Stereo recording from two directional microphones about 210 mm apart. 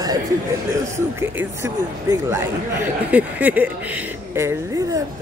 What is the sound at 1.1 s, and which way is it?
Speech, 10° right (ahead or behind).